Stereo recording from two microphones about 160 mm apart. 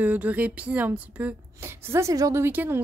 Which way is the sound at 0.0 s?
10° right (ahead or behind).